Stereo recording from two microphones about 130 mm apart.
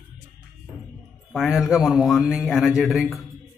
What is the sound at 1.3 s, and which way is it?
Speech, centre (ahead or behind).